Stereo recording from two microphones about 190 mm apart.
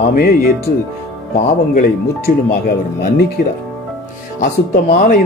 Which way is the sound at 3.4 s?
45° left (ahead or behind).